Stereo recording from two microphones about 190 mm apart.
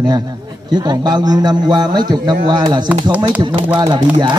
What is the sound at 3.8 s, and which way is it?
Speech, 20° right (ahead or behind).